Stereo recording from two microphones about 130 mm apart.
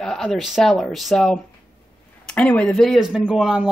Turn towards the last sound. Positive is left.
turn(degrees=-10)  # may be behind; listen again after turning